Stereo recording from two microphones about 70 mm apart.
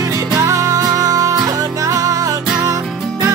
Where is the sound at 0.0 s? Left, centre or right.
Right.